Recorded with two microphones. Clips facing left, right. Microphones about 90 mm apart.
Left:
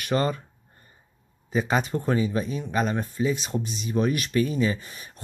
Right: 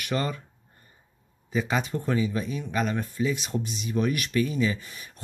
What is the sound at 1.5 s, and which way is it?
Speech, 40° left (ahead or behind).